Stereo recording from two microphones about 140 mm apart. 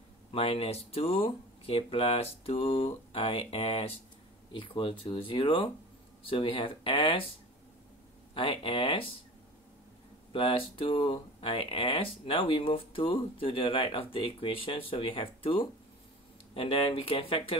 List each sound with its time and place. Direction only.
0.3 s speech: 45° left (ahead or behind)
8.4 s speech: 40° left (ahead or behind)
10.3 s speech: 40° left (ahead or behind)